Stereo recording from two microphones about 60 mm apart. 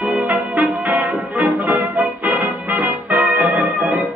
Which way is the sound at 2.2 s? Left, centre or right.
Right.